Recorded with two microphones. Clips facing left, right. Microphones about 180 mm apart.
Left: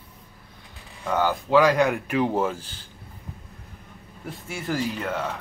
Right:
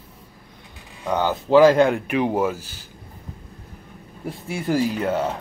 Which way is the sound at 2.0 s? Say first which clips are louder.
Right 2 dB; 15° right (ahead or behind).